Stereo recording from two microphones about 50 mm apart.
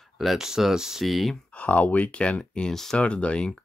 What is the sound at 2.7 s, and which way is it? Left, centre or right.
Speech, centre.